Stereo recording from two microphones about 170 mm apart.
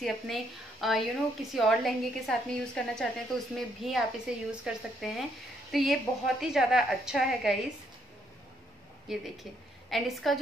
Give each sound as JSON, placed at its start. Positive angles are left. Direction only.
{"t": 0.0, "sound": "a woman's voice", "side_deg": 0}
{"t": 9.1, "sound": "a woman's voice", "side_deg": 0}